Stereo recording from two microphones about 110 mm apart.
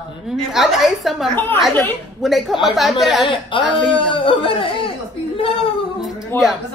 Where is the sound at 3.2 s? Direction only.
45° left (ahead or behind).